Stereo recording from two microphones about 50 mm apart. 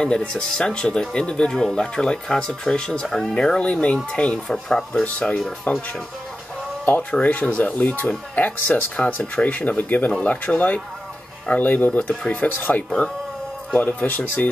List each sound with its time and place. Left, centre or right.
0.0 s speech: centre
5.0 s speech: left
6.9 s speech: left
13.7 s speech: left